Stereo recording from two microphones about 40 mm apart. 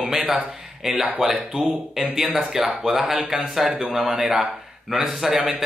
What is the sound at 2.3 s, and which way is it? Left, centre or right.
Speech, centre.